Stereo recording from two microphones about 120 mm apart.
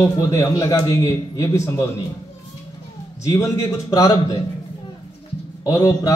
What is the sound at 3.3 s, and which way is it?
Speech, 25° left (ahead or behind).